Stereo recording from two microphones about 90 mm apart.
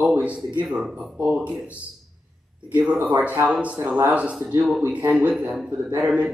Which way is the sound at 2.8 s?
15° right (ahead or behind).